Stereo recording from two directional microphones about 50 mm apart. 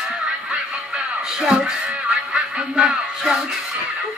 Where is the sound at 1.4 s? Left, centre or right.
Centre.